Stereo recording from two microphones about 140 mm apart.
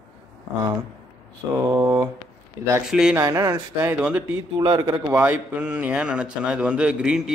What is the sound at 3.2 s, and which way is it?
Speech, 20° right (ahead or behind).